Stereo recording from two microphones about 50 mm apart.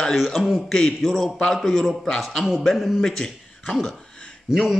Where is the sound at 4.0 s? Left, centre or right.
Left.